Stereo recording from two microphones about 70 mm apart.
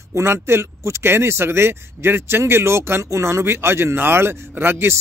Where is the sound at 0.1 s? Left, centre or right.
Right.